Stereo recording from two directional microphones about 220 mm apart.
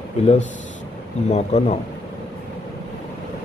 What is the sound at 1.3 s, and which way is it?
Speech, 30° left (ahead or behind).